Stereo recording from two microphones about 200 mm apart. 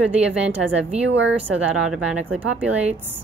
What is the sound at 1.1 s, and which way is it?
Speech, 65° right (ahead or behind).